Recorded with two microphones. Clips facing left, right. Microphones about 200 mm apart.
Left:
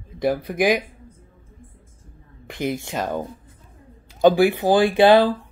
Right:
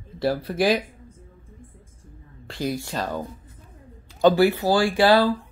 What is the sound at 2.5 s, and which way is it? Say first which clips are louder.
Speech: left 2 dB; 20° left (ahead or behind).